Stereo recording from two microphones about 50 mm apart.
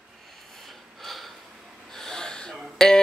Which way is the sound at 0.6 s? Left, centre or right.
Centre.